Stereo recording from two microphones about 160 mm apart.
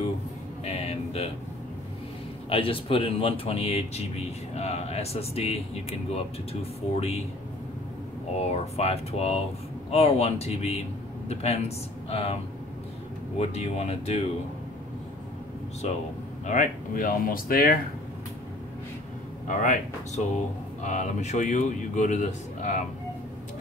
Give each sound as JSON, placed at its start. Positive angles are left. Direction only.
{"t": 0.7, "sound": "a sound", "side_deg": 40}
{"t": 2.5, "sound": "speech", "side_deg": 35}
{"t": 8.4, "sound": "speech", "side_deg": 40}
{"t": 13.4, "sound": "speech", "side_deg": 40}
{"t": 15.8, "sound": "speech", "side_deg": 40}
{"t": 16.4, "sound": "speech", "side_deg": 55}
{"t": 19.4, "sound": "speech", "side_deg": 55}
{"t": 20.8, "sound": "a man's voice", "side_deg": 50}